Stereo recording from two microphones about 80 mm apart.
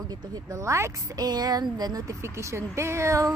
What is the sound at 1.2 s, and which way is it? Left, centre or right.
Speech, right.